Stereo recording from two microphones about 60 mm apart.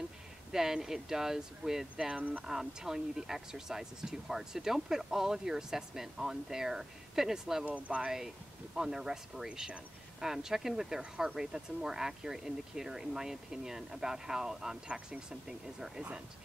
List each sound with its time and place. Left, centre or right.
0.5 s speech: centre
7.6 s speech: right
8.7 s speech: centre